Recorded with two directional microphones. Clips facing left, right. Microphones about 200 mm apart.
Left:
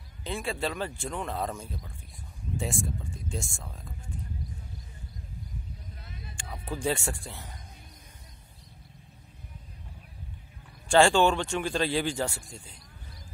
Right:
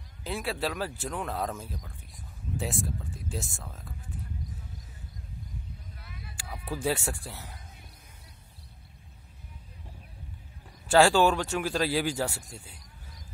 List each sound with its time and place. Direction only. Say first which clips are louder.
0.2 s a man's voice: even; 5° right (ahead or behind)
6.0 s vehicle: left 1 dB; 25° left (ahead or behind)
6.3 s speech: even; 5° right (ahead or behind)
10.9 s a man's voice: even; 5° right (ahead or behind)